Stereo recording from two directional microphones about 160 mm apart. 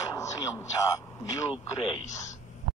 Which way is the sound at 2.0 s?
45° left (ahead or behind).